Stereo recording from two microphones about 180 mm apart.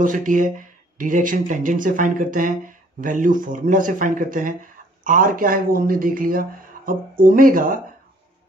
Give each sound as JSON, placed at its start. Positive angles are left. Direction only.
{"t": 0.0, "sound": "speech", "side_deg": -45}